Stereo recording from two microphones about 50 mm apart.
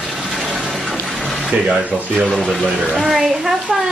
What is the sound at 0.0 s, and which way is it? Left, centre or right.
Water, centre.